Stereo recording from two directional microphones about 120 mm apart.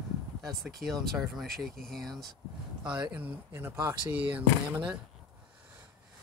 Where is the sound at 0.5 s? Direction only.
Centre (ahead or behind).